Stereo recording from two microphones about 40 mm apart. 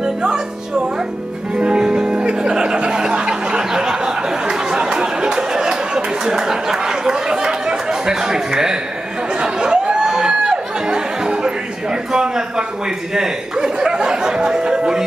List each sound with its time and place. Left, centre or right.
0.0 s music: right
9.3 s a sound: centre
13.1 s speech: centre